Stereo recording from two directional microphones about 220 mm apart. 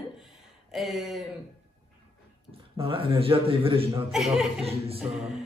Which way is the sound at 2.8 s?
25° right (ahead or behind).